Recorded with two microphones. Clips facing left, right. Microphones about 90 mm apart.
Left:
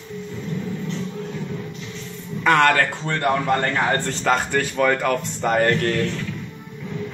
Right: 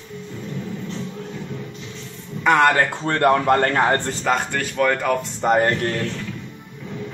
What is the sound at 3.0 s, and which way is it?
Speech, 45° right (ahead or behind).